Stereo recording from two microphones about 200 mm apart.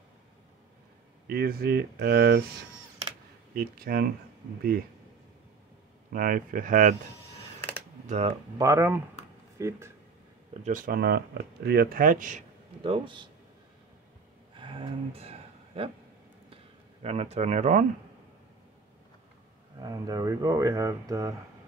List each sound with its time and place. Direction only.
1.2 s speech: 50° right (ahead or behind)
3.5 s speech: 50° right (ahead or behind)
6.1 s speech: 45° right (ahead or behind)
8.1 s speech: 30° right (ahead or behind)
8.5 s speech: 15° right (ahead or behind)
10.5 s speech: 35° right (ahead or behind)
12.8 s speech: 25° right (ahead or behind)
14.5 s a sound: 25° right (ahead or behind)
17.0 s speech: 30° right (ahead or behind)
19.8 s speech: 20° right (ahead or behind)